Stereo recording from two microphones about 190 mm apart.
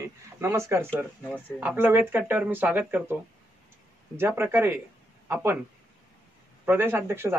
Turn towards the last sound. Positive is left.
turn(degrees=-10)  # may be behind; listen again after turning